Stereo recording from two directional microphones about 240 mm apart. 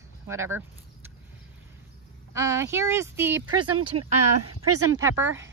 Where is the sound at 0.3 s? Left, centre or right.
Centre.